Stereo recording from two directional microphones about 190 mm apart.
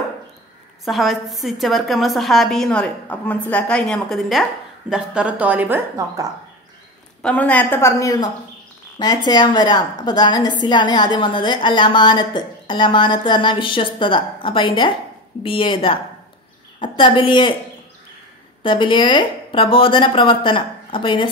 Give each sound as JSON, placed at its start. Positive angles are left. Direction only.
{"t": 0.8, "sound": "a woman's voice", "side_deg": 0}
{"t": 7.2, "sound": "a woman's voice", "side_deg": 5}
{"t": 18.6, "sound": "a woman's voice", "side_deg": 25}